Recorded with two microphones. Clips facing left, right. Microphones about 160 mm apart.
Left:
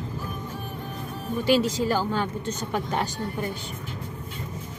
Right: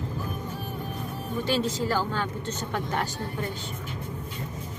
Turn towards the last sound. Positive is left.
turn(degrees=15)  # may be behind; listen again after turning